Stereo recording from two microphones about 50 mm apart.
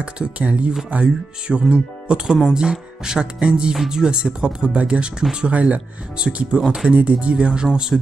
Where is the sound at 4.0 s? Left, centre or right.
Centre.